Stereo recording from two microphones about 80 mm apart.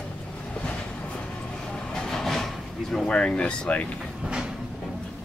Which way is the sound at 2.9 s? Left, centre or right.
Centre.